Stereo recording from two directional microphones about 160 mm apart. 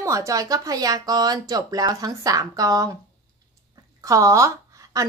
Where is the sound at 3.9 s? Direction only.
20° right (ahead or behind).